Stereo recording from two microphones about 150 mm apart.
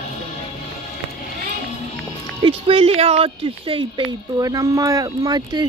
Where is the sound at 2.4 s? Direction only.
35° right (ahead or behind).